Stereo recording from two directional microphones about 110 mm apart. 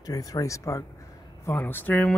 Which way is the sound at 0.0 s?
35° left (ahead or behind).